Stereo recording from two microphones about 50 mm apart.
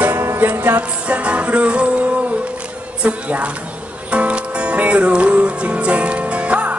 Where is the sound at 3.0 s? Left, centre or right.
Right.